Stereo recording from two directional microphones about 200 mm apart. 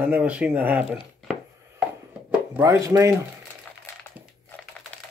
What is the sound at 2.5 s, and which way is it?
Speech, 15° right (ahead or behind).